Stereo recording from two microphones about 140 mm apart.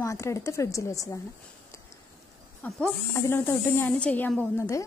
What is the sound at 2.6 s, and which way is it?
A woman's voice, 15° left (ahead or behind).